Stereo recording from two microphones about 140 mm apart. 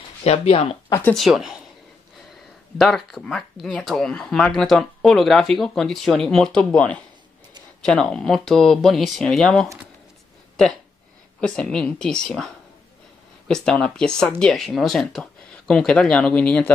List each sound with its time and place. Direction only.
0.2 s speech: 45° left (ahead or behind)
1.1 s speech: centre (ahead or behind)
2.8 s speech: centre (ahead or behind)
11.4 s speech: 5° left (ahead or behind)